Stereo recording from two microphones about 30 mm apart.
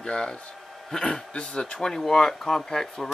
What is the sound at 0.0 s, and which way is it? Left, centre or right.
Speech, left.